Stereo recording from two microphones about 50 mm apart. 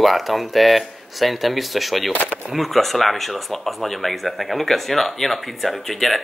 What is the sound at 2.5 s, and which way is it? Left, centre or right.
Speech, centre.